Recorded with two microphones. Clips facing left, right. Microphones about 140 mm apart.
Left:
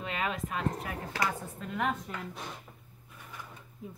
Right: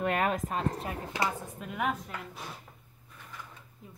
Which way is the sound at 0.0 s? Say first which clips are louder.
Right 6 dB; 55° right (ahead or behind).